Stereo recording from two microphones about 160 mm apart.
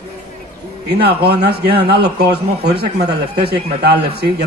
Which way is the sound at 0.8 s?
90° right.